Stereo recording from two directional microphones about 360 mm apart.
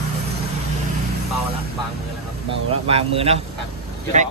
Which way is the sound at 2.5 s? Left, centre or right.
Centre.